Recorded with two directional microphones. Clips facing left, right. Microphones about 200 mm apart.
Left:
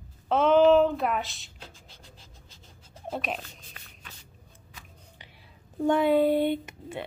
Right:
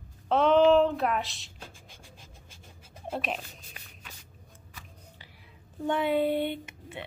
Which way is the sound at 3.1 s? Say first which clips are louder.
Even; centre (ahead or behind).